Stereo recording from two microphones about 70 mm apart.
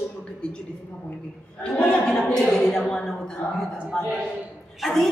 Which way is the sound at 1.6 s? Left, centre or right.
Centre.